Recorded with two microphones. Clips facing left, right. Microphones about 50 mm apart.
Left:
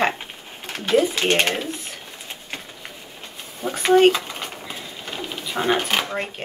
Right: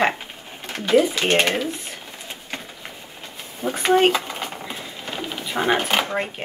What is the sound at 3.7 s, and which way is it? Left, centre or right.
Speech, centre.